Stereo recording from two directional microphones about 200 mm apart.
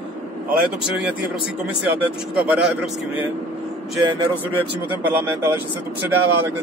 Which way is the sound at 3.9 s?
25° right (ahead or behind).